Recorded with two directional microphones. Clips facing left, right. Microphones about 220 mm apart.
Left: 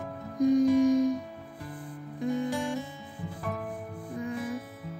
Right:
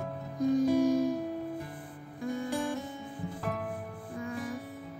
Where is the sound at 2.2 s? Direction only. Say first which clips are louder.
Left 5 dB; 20° left (ahead or behind).